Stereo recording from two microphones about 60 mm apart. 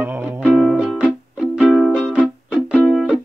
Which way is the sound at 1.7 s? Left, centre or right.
Centre.